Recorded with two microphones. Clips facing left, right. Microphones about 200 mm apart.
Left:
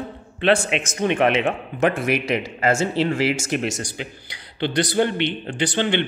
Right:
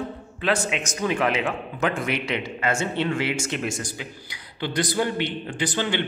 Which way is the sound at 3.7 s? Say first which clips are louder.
Left 2 dB; 75° left (ahead or behind).